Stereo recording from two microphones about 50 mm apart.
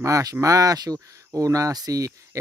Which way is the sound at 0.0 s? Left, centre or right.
Right.